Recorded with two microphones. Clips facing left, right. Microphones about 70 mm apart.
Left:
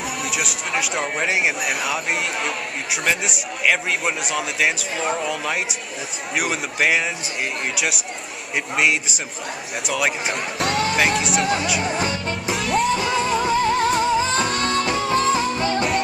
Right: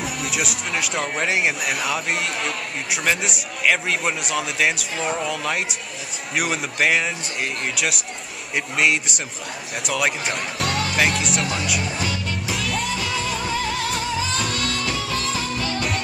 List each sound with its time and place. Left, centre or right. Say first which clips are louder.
0.0 s music: even; centre
1.1 s speech: even; centre
11.8 s music: left 3 dB; left
12.5 s music: left 7 dB; centre
12.9 s music: left 5 dB; left